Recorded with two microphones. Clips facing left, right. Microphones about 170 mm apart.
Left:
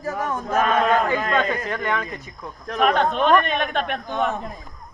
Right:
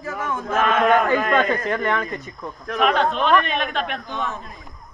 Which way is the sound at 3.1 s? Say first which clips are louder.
Left 1 dB; 55° left (ahead or behind).